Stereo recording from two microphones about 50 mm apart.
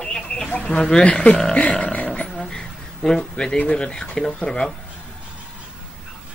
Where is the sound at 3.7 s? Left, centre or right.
Centre.